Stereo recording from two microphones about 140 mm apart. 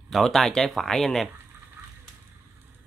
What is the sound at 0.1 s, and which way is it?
Speech, centre (ahead or behind).